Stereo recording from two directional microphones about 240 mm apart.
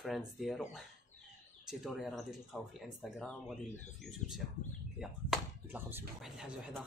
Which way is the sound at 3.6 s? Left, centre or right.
Left.